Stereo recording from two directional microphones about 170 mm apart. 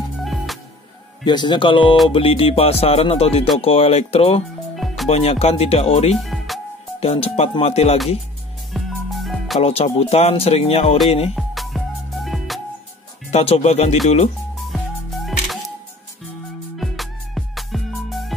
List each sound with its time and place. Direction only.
0.2 s music: centre (ahead or behind)
1.2 s speech: 25° left (ahead or behind)
4.7 s music: centre (ahead or behind)
5.1 s speech: 35° left (ahead or behind)
6.1 s music: centre (ahead or behind)
7.0 s speech: 35° left (ahead or behind)
8.7 s music: centre (ahead or behind)
9.6 s speech: 35° left (ahead or behind)
11.3 s music: centre (ahead or behind)
13.3 s speech: 40° left (ahead or behind)
15.2 s music: centre (ahead or behind)
16.7 s music: centre (ahead or behind)